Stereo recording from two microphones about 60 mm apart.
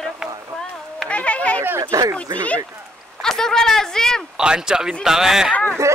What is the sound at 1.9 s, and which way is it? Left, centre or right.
Speech, right.